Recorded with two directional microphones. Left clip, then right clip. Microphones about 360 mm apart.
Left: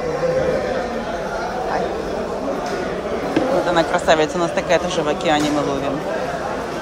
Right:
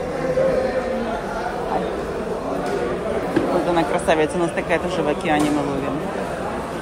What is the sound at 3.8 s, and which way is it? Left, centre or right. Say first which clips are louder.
Speech: left 4 dB; centre.